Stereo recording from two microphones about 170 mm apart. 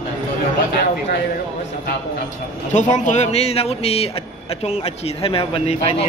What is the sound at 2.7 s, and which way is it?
Speech, 45° left (ahead or behind).